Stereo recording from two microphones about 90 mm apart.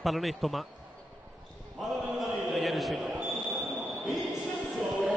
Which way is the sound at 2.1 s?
5° right (ahead or behind).